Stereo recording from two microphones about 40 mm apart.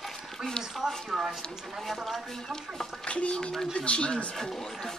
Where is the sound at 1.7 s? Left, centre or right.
Centre.